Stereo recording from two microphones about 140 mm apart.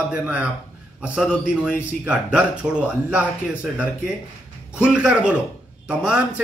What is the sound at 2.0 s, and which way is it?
A man's voice, 10° right (ahead or behind).